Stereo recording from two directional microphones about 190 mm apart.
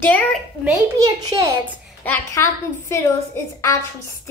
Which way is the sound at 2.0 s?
15° left (ahead or behind).